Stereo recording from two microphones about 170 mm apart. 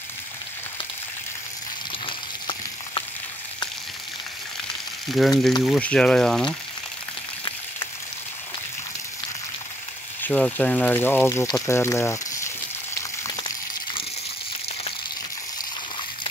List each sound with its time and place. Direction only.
2.0 s a sound: 30° left (ahead or behind)
5.2 s speech: centre (ahead or behind)
10.2 s speech: 5° left (ahead or behind)